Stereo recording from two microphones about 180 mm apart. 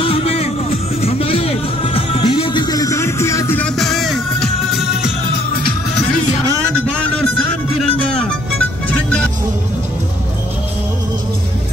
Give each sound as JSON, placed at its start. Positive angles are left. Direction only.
{"t": 0.0, "sound": "music", "side_deg": 30}